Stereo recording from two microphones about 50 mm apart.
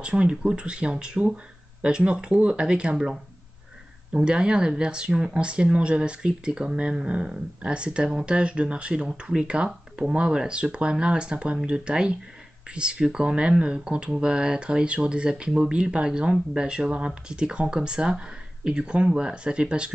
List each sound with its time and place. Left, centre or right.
0.0 s speech: right